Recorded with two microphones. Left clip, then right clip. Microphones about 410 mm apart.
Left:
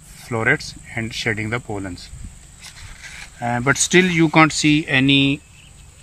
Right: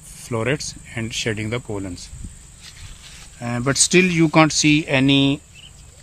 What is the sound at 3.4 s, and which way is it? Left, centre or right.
Speech, centre.